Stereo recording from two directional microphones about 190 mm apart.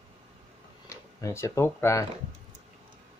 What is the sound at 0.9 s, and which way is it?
Speech, 15° left (ahead or behind).